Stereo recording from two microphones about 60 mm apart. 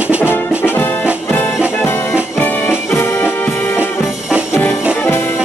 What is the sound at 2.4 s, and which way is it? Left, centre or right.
Music, left.